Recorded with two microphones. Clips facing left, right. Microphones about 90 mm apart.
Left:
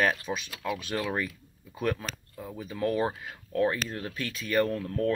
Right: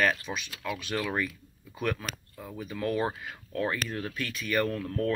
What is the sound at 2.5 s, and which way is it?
Speech, 30° left (ahead or behind).